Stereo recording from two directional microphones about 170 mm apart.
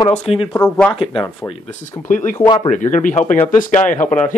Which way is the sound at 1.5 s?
45° left (ahead or behind).